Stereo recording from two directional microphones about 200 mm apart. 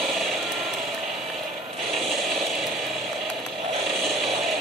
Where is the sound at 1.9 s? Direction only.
Centre (ahead or behind).